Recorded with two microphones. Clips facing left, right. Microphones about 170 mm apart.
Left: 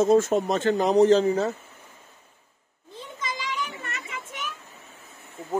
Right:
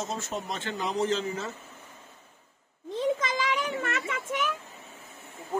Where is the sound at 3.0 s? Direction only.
90° right.